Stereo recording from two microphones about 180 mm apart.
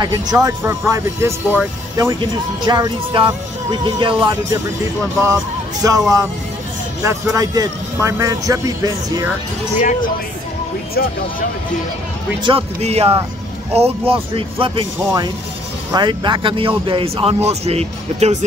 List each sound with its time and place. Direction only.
0.0 s speech: 20° right (ahead or behind)
2.6 s a man's voice: 25° right (ahead or behind)
5.2 s a man's voice: 20° right (ahead or behind)
9.8 s speech: 45° left (ahead or behind)
11.0 s speech: 60° left (ahead or behind)
12.4 s speech: 35° right (ahead or behind)